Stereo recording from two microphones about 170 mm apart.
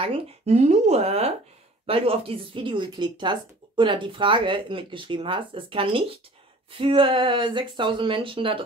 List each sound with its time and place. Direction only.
0.0 s speech: 40° right (ahead or behind)